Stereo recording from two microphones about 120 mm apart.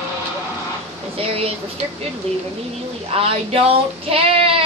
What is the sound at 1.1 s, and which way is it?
Speech, 55° right (ahead or behind).